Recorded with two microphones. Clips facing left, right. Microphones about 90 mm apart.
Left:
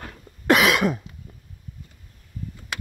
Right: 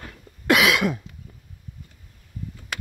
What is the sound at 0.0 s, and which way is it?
Cough, 40° left (ahead or behind).